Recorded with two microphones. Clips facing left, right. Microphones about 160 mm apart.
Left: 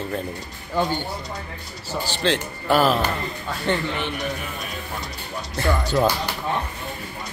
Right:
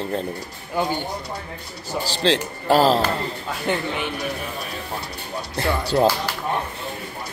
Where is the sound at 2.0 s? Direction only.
35° right (ahead or behind).